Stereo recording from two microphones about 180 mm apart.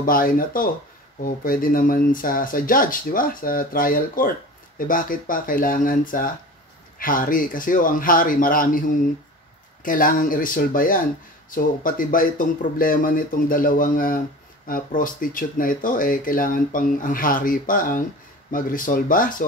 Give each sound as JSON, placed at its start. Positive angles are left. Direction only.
{"t": 0.0, "sound": "speech", "side_deg": 50}